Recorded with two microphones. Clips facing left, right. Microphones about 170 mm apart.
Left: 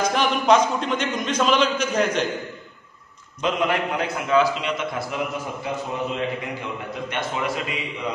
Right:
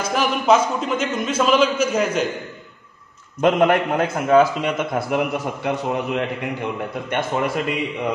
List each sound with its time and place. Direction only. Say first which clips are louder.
0.1 s a man's voice: right 4 dB; 5° right (ahead or behind)
3.3 s a man's voice: right 7 dB; 55° right (ahead or behind)